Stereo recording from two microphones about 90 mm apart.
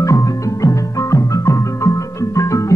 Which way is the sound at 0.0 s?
35° left (ahead or behind).